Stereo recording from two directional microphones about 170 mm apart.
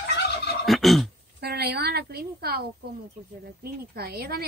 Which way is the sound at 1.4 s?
70° right (ahead or behind).